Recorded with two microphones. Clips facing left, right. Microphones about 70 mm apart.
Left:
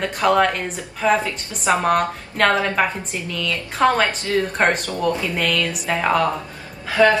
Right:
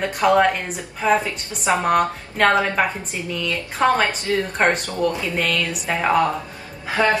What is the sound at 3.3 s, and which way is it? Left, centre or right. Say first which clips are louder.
A woman's voice: right 1 dB; centre.